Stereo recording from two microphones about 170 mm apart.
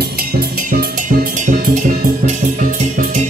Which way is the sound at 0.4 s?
65° right (ahead or behind).